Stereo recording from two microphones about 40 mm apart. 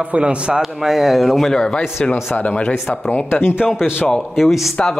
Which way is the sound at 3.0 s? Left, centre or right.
Left.